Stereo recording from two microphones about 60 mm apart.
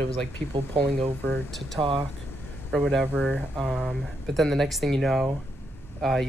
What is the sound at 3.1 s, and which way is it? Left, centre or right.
Speech, right.